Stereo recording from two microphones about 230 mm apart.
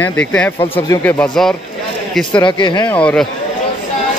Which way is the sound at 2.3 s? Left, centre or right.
Left.